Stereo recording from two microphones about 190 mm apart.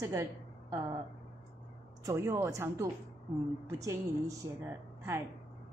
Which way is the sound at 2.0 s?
15° right (ahead or behind).